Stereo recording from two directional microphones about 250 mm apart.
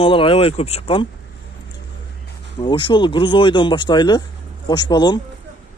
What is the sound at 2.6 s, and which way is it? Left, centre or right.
Speech, centre.